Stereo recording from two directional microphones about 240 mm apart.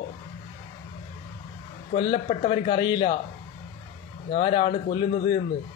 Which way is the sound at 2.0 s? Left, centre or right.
Left.